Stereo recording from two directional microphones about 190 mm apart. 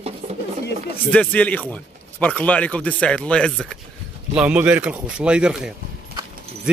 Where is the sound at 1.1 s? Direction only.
5° left (ahead or behind).